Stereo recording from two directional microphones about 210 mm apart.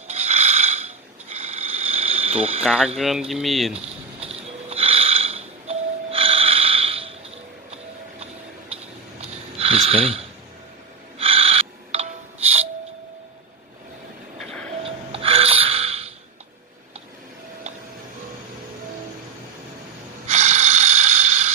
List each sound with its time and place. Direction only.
0.1 s mechanisms: 30° right (ahead or behind)
2.6 s speech: 5° right (ahead or behind)
3.8 s a sound: 30° right (ahead or behind)
9.6 s a sound: 25° right (ahead or behind)
11.1 s music: 25° right (ahead or behind)
14.8 s music: 25° right (ahead or behind)
20.2 s mechanisms: 30° right (ahead or behind)